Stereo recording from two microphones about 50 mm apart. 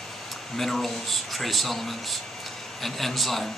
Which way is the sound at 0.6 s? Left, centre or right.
Centre.